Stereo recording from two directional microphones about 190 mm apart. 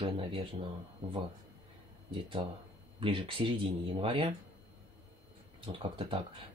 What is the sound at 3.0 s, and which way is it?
Speech, 25° right (ahead or behind).